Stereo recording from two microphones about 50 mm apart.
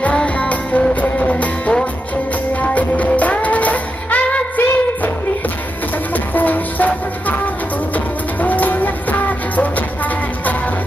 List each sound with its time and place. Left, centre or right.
0.0 s music: left
6.1 s music: left